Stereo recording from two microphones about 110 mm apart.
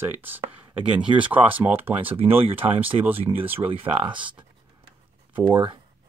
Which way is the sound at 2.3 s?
60° right (ahead or behind).